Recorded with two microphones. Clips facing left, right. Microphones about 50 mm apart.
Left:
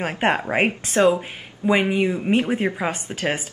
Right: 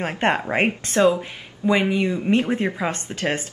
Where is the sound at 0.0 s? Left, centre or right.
Centre.